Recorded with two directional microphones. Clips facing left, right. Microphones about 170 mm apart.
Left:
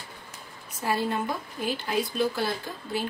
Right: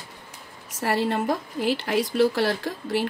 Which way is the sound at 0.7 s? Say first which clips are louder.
Right 3 dB; 85° right.